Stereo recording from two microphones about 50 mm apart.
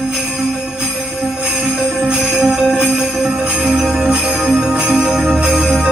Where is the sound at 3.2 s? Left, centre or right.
Centre.